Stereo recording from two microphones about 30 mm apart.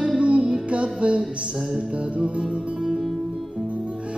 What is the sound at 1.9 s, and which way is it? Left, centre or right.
Music, right.